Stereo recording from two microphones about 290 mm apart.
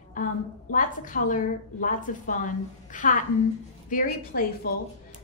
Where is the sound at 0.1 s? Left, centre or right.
Left.